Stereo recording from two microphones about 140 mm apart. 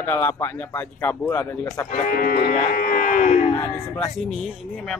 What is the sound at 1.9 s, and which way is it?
Speech, 75° left (ahead or behind).